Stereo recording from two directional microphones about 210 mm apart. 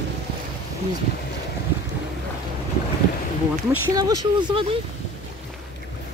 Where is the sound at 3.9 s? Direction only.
25° right (ahead or behind).